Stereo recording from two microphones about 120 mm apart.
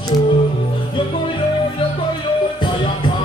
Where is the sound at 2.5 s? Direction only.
45° left (ahead or behind).